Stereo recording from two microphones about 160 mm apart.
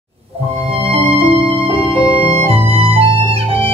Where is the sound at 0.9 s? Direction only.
35° right (ahead or behind).